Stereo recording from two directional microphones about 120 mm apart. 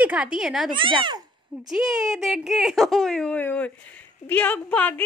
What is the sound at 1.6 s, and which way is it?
Speech, 5° right (ahead or behind).